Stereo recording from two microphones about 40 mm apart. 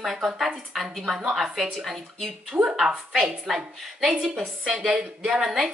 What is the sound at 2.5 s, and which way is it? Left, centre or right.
Speech, right.